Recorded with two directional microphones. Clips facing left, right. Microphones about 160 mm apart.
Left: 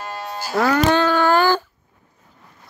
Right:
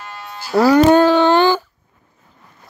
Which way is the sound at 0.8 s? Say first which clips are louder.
Right 6 dB; 35° right (ahead or behind).